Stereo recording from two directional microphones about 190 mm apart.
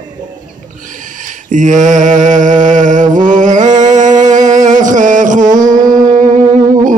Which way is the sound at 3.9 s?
40° right (ahead or behind).